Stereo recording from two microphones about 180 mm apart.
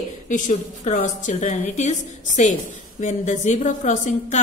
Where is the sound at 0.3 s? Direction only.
45° left (ahead or behind).